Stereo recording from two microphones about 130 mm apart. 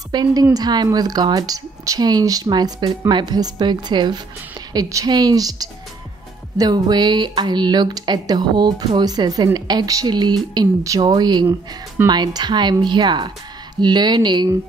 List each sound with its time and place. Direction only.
0.1 s a woman's voice: 30° right (ahead or behind)